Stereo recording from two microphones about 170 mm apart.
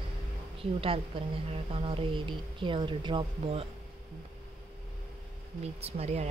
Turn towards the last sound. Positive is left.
turn(degrees=-40)  # may be behind; listen again after turning